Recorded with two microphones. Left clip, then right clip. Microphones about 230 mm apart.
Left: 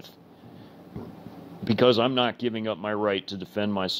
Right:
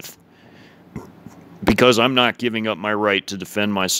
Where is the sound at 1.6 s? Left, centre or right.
Right.